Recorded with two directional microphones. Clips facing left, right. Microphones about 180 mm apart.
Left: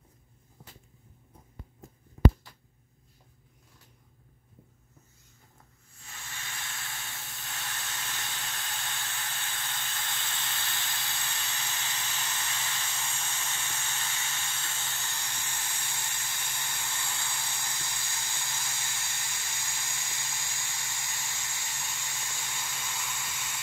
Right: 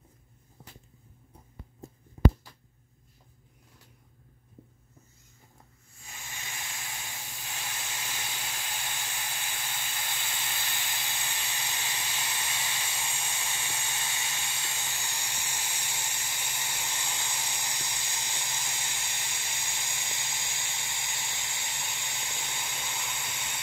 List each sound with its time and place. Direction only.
6.0 s hiss: 15° right (ahead or behind)